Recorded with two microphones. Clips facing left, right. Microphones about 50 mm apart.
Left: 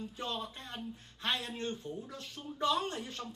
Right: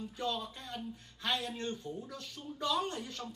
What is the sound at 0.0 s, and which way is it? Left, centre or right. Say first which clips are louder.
A woman's voice: right 2 dB; left.